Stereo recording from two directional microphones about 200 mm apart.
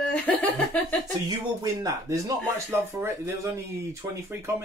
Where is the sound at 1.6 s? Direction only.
15° right (ahead or behind).